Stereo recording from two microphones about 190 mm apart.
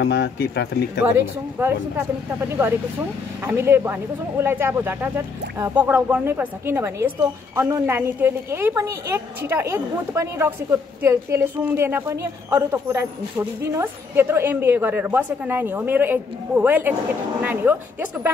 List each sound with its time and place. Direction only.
0.0 s speech: 65° left (ahead or behind)
1.6 s a woman's voice: 10° right (ahead or behind)